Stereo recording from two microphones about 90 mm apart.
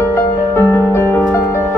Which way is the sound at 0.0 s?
25° left (ahead or behind).